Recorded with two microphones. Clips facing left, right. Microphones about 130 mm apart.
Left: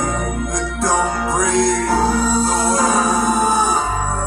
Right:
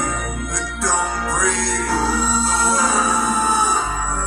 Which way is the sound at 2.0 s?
50° left (ahead or behind).